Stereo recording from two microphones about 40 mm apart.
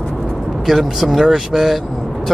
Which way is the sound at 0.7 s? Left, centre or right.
Centre.